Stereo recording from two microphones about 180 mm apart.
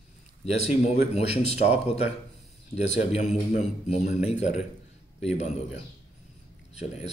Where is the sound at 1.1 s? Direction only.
35° left (ahead or behind).